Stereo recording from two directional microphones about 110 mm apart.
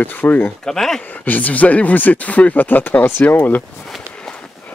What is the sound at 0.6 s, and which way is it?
Speech, 5° left (ahead or behind).